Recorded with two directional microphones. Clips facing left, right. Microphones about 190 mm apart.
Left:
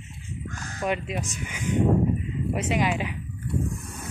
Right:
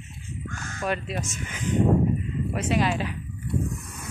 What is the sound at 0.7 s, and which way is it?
Speech, 15° left (ahead or behind).